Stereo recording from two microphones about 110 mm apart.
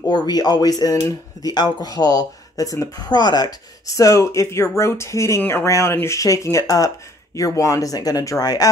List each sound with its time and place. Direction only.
0.1 s speech: 40° left (ahead or behind)